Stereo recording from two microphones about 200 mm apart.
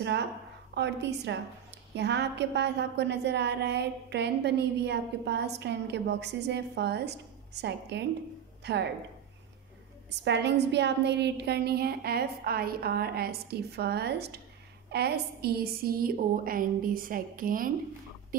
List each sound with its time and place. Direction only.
0.0 s a woman's voice: 60° right (ahead or behind)
10.2 s a woman's voice: 60° right (ahead or behind); by 17.7 s 45° right (ahead or behind)